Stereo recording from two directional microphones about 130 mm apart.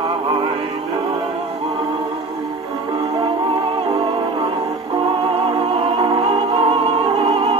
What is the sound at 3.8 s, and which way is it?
Music, 40° right (ahead or behind).